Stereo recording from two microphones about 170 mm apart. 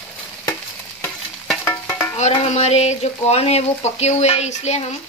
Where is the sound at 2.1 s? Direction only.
40° left (ahead or behind).